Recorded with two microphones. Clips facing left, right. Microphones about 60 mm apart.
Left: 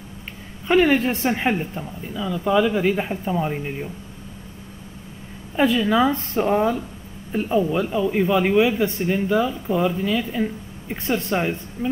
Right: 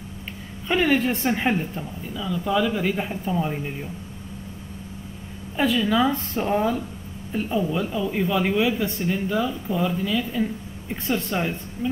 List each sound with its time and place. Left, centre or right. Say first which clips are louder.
0.7 s speech: left 4 dB; left
5.6 s speech: left 3 dB; centre